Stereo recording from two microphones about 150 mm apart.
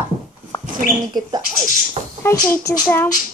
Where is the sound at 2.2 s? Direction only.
20° left (ahead or behind).